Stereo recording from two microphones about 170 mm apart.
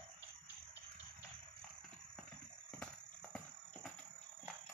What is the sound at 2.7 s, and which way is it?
Clip-clop, 5° left (ahead or behind).